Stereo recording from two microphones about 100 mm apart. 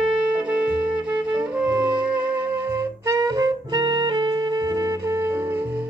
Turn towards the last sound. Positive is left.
turn(degrees=-20)  # may be behind; listen again after turning